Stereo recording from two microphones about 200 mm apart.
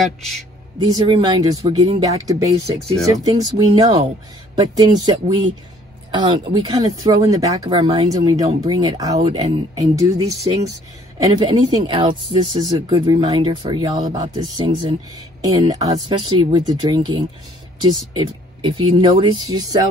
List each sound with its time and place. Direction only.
0.0 s speech: centre (ahead or behind)
0.7 s speech: 20° right (ahead or behind)
6.1 s speech: 25° right (ahead or behind)